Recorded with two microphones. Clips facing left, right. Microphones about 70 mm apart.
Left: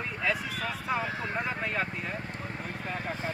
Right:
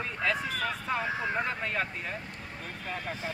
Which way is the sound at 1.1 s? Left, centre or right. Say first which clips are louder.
Right 2 dB; centre.